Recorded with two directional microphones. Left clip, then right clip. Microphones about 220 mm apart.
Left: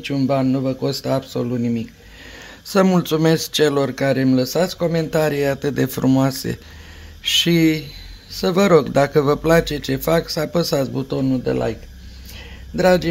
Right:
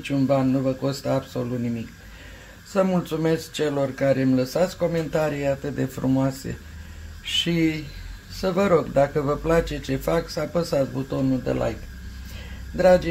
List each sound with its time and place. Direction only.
0.0 s speech: 45° left (ahead or behind)
2.7 s speech: 50° left (ahead or behind)
12.7 s speech: 50° left (ahead or behind)